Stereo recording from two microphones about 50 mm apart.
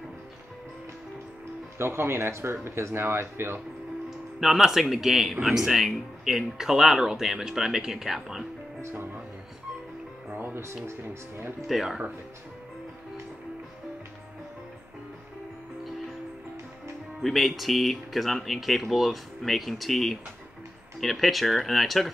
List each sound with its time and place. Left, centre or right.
1.8 s speech: right
4.4 s speech: centre
8.8 s music: right
10.3 s music: right
10.6 s speech: right
11.6 s speech: centre
17.2 s speech: centre